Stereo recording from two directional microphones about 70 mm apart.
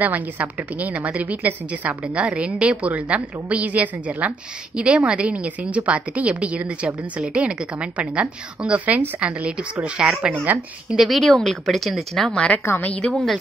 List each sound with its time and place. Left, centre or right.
0.0 s a woman's voice: right
10.9 s a woman's voice: centre
12.3 s a woman's voice: centre
12.6 s a woman's voice: left
12.9 s a woman's voice: centre